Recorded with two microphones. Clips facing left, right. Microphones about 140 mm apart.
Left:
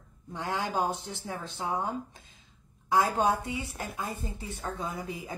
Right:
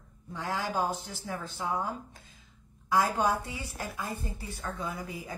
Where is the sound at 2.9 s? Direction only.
25° left (ahead or behind).